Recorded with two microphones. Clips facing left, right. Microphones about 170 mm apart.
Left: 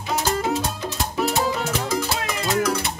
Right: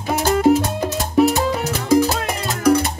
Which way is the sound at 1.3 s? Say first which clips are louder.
Right 3 dB; 45° right (ahead or behind).